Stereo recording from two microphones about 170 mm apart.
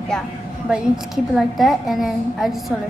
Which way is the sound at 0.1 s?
5° left (ahead or behind).